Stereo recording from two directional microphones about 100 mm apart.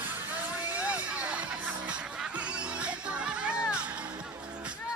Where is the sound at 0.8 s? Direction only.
15° right (ahead or behind).